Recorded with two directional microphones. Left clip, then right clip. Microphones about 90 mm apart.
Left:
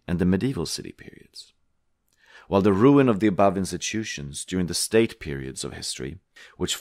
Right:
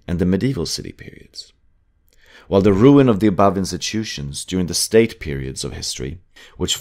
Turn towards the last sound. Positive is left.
turn(degrees=35)  # may be behind; listen again after turning